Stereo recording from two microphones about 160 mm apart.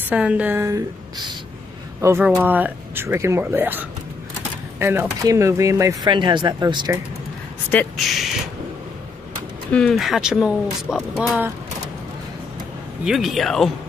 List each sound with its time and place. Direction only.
0.1 s speech: 5° right (ahead or behind); by 7.0 s 25° right (ahead or behind)
7.7 s speech: 10° left (ahead or behind)
9.7 s speech: 5° left (ahead or behind)
13.0 s speech: centre (ahead or behind)